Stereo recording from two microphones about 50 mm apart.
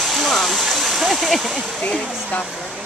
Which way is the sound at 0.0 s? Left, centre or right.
Centre.